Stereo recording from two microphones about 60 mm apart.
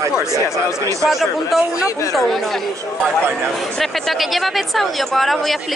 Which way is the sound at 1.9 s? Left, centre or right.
Left.